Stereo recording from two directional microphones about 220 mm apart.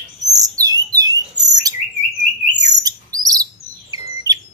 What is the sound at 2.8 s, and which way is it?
Chirp, 15° right (ahead or behind).